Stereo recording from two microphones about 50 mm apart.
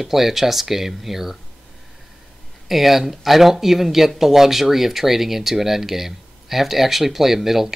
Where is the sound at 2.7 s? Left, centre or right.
Centre.